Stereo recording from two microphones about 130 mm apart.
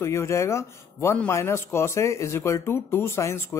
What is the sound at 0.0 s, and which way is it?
Speech, 20° left (ahead or behind).